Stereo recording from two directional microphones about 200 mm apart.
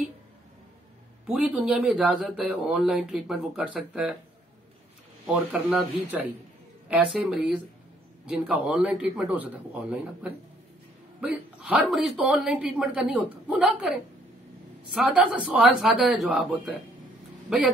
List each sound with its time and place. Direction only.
1.2 s speech: 5° right (ahead or behind)
5.2 s a man's voice: 5° right (ahead or behind)